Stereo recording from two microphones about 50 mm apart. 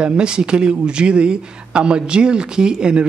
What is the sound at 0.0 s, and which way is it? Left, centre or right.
Speech, centre.